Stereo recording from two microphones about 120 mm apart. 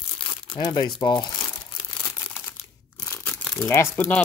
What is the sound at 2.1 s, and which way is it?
Crumpling, 20° left (ahead or behind).